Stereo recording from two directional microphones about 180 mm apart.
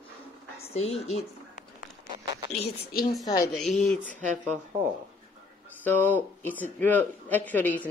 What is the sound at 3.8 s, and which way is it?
Speech, 5° left (ahead or behind).